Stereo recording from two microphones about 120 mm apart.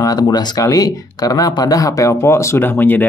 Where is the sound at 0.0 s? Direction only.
30° left (ahead or behind).